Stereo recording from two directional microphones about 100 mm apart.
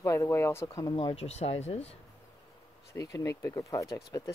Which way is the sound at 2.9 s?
35° left (ahead or behind).